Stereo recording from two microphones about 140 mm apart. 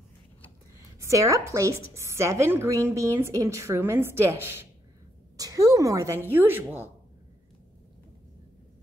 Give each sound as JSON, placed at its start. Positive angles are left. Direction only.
{"t": 0.9, "sound": "a woman's voice", "side_deg": -20}